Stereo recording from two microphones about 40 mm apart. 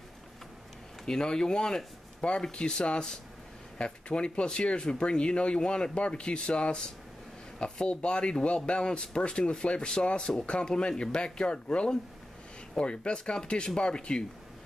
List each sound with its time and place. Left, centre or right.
1.0 s speech: centre